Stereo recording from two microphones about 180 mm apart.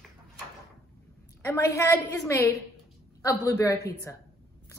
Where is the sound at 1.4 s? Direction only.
15° left (ahead or behind).